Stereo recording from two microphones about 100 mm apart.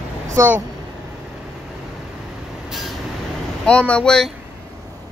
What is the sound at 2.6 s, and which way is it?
Vehicle, centre (ahead or behind).